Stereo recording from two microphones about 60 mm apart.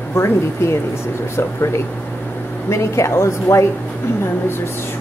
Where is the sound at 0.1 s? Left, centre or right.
Left.